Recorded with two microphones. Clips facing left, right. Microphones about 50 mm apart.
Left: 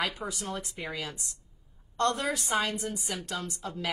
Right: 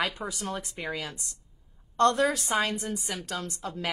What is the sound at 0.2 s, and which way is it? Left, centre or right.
Speech, right.